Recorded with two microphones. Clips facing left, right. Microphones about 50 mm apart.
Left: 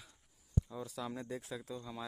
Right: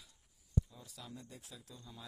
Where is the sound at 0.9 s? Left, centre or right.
Left.